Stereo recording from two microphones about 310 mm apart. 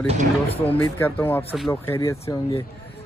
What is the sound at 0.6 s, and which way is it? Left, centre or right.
Speech, centre.